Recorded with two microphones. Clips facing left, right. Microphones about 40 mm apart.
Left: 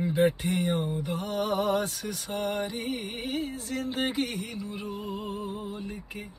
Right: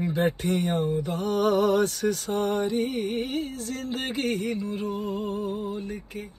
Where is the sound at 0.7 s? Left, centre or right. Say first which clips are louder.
Right 3 dB; right.